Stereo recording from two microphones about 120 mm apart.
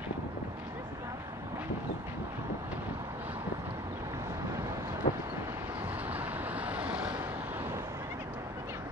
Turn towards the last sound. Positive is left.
turn(degrees=-20)  # may be behind; listen again after turning